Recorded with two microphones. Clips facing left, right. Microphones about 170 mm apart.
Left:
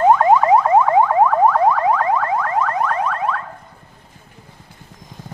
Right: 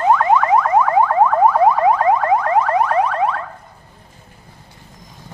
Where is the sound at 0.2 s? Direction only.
25° left (ahead or behind).